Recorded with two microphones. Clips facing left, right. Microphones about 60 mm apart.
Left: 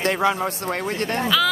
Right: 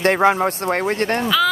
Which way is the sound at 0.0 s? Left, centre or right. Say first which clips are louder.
Right 5 dB; right.